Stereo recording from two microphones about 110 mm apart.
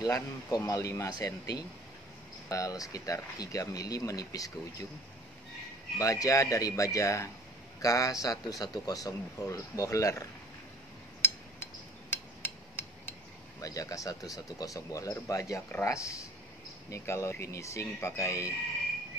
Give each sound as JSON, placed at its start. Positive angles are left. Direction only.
{"t": 0.0, "sound": "a man's voice", "side_deg": 35}
{"t": 5.9, "sound": "a man's voice", "side_deg": 30}
{"t": 11.1, "sound": "a sound", "side_deg": 20}
{"t": 13.6, "sound": "a man's voice", "side_deg": 30}